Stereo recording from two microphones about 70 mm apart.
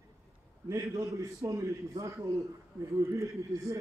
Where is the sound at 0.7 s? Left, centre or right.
Right.